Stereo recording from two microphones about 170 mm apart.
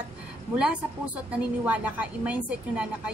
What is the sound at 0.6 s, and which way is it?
A woman's voice, 5° right (ahead or behind).